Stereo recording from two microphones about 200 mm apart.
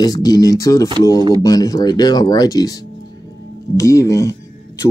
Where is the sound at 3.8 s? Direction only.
15° left (ahead or behind).